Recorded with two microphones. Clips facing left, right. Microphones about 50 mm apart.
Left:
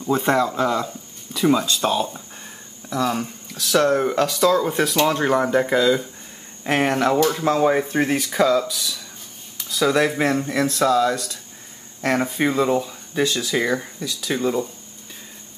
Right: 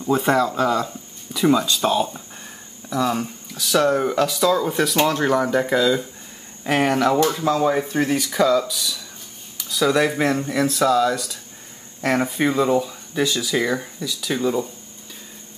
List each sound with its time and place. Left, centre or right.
0.0 s speech: centre
7.4 s speech: centre
8.2 s speech: centre